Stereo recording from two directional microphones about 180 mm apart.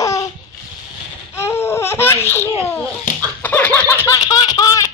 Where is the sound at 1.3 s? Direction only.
15° left (ahead or behind).